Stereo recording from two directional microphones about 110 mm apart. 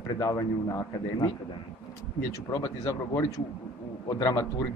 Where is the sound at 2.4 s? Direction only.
25° left (ahead or behind).